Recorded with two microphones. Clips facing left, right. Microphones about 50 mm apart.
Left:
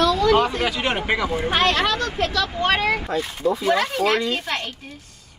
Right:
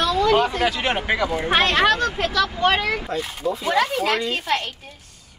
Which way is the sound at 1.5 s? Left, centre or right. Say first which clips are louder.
Right 3 dB; right.